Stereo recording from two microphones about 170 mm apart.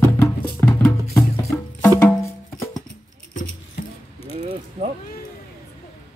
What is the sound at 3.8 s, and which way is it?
Keys jangling, 65° left (ahead or behind).